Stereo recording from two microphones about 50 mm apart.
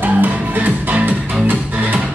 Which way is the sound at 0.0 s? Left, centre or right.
Right.